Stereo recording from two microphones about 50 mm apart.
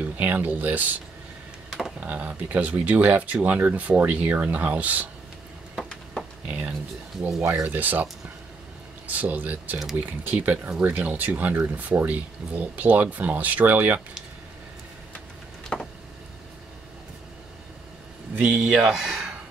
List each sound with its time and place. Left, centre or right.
0.0 s speech: right
2.0 s speech: right
6.4 s speech: right
15.7 s a sound: centre
18.4 s speech: centre